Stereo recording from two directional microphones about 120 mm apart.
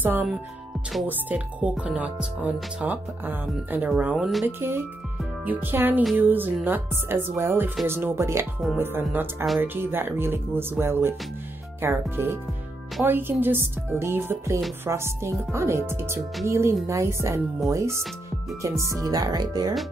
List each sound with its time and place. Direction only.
0.0 s speech: 15° right (ahead or behind)
4.5 s speech: 20° right (ahead or behind); by 19.7 s 35° right (ahead or behind)